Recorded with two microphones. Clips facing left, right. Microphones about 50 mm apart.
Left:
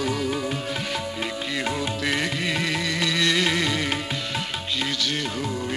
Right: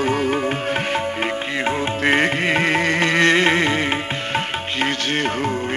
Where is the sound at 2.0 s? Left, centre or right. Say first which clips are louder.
Right 9 dB; right.